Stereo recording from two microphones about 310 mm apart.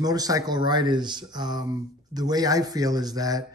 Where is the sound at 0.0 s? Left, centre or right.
Centre.